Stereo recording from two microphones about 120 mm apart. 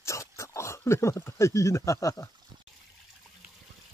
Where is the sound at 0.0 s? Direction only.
25° left (ahead or behind).